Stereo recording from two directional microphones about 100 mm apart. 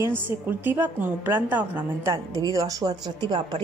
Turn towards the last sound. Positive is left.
turn(degrees=-45)  # may be behind; listen again after turning